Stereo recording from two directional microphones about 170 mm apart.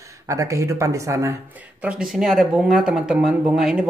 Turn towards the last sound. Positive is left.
turn(degrees=-5)  # may be behind; listen again after turning